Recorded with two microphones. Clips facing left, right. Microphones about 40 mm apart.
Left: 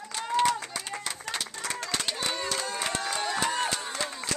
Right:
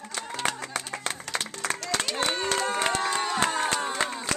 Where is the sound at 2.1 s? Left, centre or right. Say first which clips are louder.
Right 4 dB; right.